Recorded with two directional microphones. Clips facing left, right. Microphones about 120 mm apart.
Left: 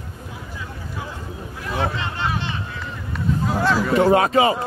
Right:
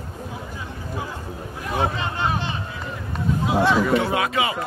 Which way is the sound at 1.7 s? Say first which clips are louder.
Right 1 dB; 15° right (ahead or behind).